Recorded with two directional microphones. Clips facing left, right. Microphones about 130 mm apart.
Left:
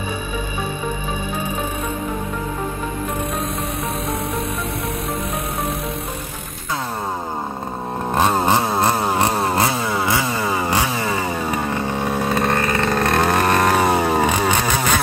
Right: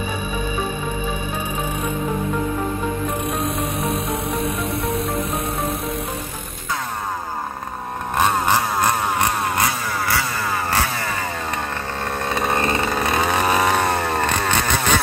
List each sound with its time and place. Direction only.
8.2 s chainsaw: 30° left (ahead or behind)
10.1 s chainsaw: 15° left (ahead or behind); by 12.5 s centre (ahead or behind)
12.5 s vehicle: 25° right (ahead or behind)
12.8 s vehicle: centre (ahead or behind)